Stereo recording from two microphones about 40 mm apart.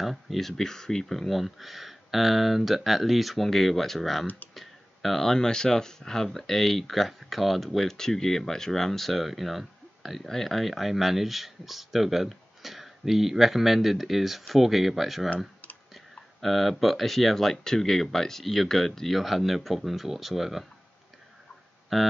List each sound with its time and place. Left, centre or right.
0.0 s speech: centre
15.2 s typing: left
15.9 s speech: centre
19.1 s speech: centre
21.9 s speech: centre